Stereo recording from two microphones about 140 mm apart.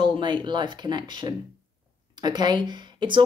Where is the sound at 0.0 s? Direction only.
35° right (ahead or behind).